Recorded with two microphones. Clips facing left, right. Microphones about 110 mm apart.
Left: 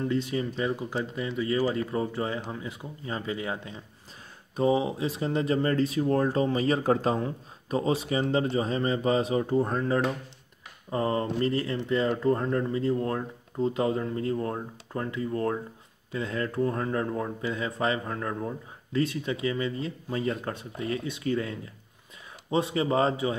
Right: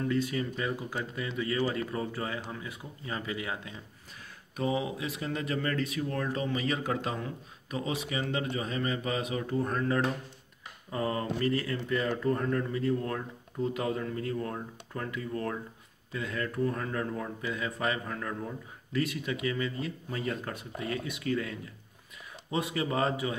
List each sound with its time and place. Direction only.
0.0 s speech: 25° left (ahead or behind)